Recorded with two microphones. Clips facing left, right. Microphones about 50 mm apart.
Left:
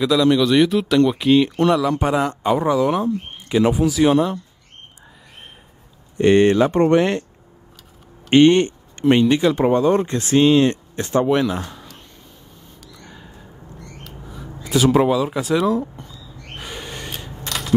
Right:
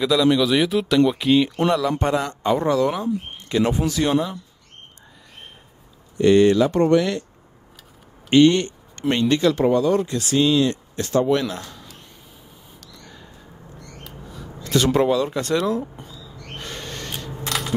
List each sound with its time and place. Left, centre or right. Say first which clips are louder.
0.0 s a man's voice: left 2 dB; centre
6.1 s speech: left 1 dB; left
8.3 s a sound: left 2 dB; left
9.1 s speech: left 3 dB; centre
9.8 s speech: left 2 dB; left
11.0 s speech: left 1 dB; left
12.8 s a sound: left 3 dB; centre
14.3 s speech: left 1 dB; centre
16.5 s a sound: left 1 dB; centre
17.5 s crushing: even; centre